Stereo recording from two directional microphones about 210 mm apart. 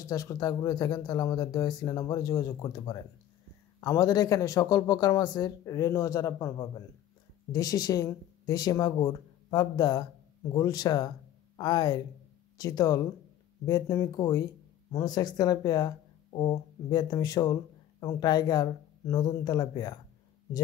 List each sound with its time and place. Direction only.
0.0 s speech: 15° left (ahead or behind)